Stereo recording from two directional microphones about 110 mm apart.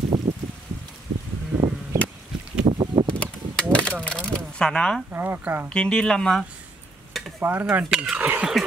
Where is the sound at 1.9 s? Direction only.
25° right (ahead or behind).